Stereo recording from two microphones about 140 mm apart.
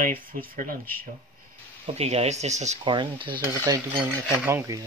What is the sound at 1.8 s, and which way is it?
Speech, 50° right (ahead or behind).